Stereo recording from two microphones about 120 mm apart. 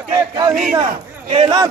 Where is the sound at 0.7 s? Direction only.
45° right (ahead or behind).